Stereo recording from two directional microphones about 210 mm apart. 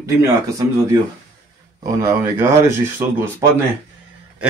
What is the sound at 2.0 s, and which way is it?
Speech, 15° right (ahead or behind).